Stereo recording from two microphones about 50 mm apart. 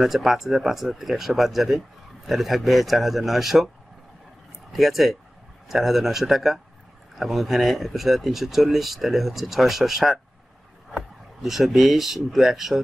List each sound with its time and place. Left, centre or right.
0.0 s speech: centre
4.7 s speech: centre